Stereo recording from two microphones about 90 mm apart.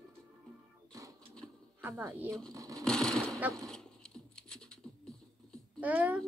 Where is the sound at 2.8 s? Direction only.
10° left (ahead or behind).